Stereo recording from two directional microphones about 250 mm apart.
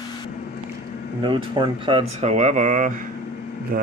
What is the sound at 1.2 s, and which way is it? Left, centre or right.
Speech, centre.